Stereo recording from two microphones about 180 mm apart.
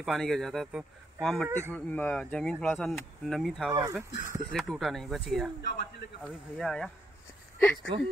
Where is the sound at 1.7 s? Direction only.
10° left (ahead or behind).